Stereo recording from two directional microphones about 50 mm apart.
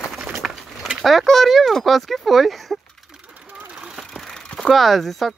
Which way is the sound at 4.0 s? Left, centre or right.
Centre.